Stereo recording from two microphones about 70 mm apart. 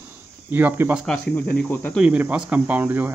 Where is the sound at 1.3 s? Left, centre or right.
Left.